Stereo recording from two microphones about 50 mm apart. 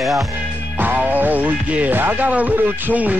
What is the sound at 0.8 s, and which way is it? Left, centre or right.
Music, right.